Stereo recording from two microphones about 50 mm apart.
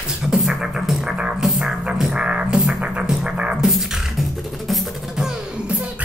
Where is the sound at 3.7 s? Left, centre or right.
Centre.